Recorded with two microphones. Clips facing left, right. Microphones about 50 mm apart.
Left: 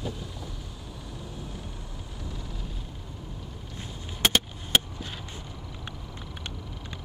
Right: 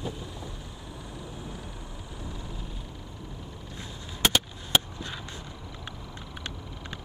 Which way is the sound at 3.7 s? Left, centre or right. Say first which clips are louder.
Left 1 dB; left.